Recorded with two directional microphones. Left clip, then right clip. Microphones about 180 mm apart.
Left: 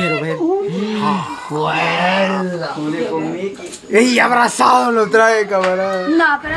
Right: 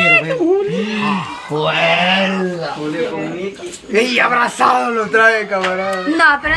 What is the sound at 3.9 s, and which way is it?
Speech, 45° left (ahead or behind).